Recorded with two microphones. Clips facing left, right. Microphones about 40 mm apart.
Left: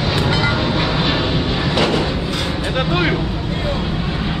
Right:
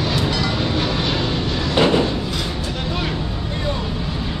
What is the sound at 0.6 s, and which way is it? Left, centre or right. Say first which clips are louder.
Vehicle: left 3 dB; centre.